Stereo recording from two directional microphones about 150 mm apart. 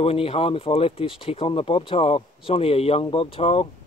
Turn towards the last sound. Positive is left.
turn(degrees=40)  # may be behind; listen again after turning